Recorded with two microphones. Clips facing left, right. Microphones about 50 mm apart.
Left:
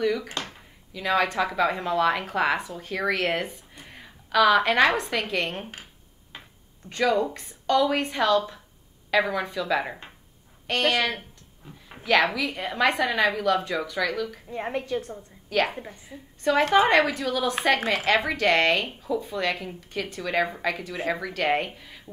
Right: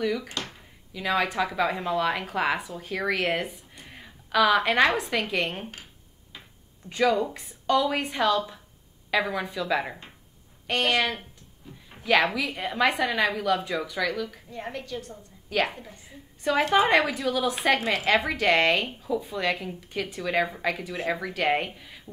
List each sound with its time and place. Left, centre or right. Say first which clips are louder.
0.0 s speech: left 2 dB; centre
3.7 s a sound: left 1 dB; centre
5.3 s speech: even; centre
6.9 s a woman's voice: even; centre
14.5 s a woman's voice: left 6 dB; left
16.1 s a woman's voice: left 2 dB; centre